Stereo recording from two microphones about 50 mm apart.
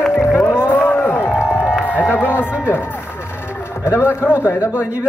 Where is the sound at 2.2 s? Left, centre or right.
Left.